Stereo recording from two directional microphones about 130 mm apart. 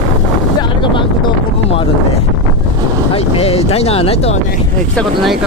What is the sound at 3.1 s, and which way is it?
Speech, 45° left (ahead or behind).